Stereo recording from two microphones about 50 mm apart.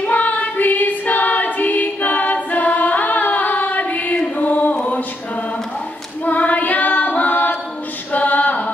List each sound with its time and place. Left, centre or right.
0.0 s singing: left
4.4 s music: left
6.2 s choir: left
8.1 s a capella: left